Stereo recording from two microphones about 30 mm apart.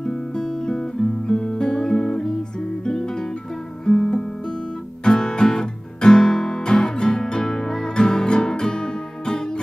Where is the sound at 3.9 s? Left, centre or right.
Left.